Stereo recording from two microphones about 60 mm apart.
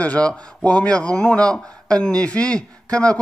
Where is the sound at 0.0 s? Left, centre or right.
Centre.